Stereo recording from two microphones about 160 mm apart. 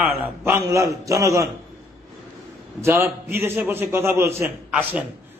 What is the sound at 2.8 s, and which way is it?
A man's voice, 15° right (ahead or behind).